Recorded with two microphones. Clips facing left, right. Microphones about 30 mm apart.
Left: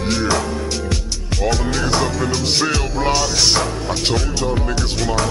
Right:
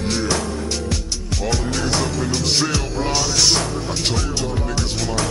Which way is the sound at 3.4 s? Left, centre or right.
Centre.